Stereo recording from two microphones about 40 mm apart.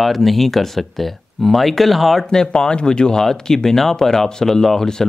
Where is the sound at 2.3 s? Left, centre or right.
Centre.